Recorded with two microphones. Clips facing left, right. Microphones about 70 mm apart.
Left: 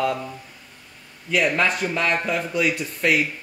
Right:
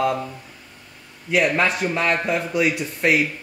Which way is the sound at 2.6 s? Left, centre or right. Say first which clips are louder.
Right 1 dB; centre.